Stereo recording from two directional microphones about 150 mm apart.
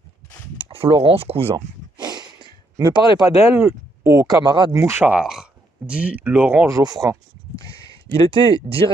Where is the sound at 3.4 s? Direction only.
15° right (ahead or behind).